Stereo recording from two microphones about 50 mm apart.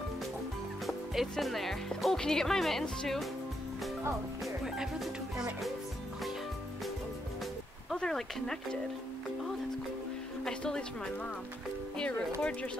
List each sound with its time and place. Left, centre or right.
0.8 s music: centre
1.4 s speech: centre
4.6 s music: centre
7.9 s speech: centre
10.4 s speech: centre
12.4 s speech: left